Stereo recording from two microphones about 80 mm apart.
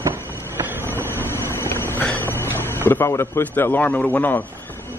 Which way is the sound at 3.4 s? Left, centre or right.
Left.